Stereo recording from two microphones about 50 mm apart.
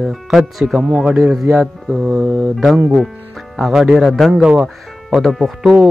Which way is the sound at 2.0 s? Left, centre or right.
Right.